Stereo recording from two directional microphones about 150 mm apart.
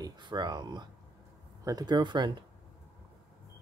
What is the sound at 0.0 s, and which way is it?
Speech, 30° right (ahead or behind).